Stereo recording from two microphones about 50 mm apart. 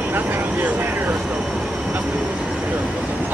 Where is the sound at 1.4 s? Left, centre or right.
Centre.